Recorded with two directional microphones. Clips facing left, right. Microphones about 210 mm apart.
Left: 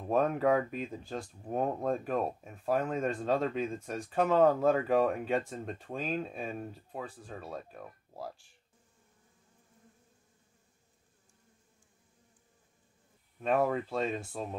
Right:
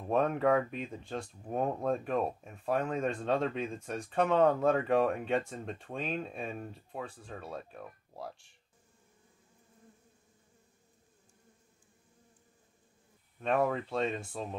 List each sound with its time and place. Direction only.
0.0 s speech: centre (ahead or behind)
13.4 s speech: 5° left (ahead or behind)